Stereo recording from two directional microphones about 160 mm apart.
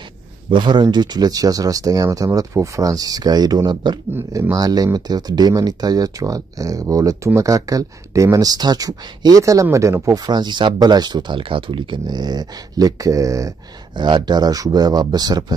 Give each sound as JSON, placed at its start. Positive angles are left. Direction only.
{"t": 0.5, "sound": "speech", "side_deg": -30}